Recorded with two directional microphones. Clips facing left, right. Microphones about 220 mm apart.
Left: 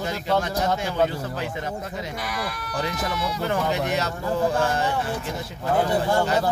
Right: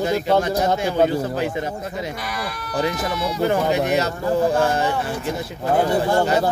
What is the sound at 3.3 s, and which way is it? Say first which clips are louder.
Speech: right 7 dB; 15° right (ahead or behind).